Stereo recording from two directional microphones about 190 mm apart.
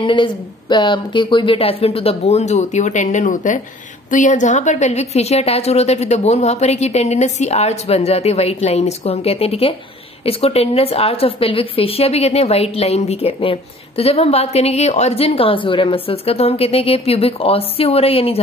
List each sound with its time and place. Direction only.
0.0 s a woman's voice: 25° left (ahead or behind)